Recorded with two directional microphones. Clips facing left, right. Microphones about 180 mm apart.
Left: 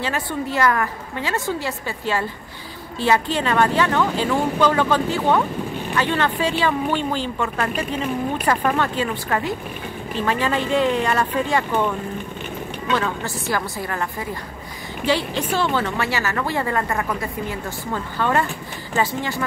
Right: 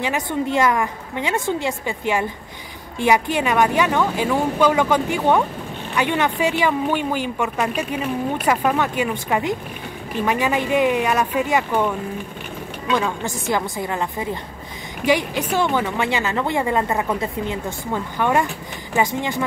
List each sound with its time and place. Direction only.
0.0 s a woman's voice: 20° right (ahead or behind)
12.9 s a woman's voice: 15° right (ahead or behind)